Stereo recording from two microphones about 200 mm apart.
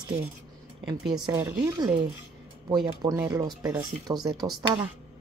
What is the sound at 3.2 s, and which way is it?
Speech, 20° right (ahead or behind).